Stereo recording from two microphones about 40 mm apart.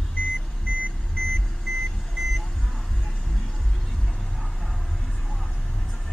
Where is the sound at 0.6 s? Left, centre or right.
Right.